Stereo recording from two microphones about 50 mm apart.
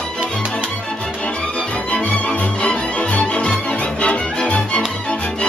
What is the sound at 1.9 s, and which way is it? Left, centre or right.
Music, left.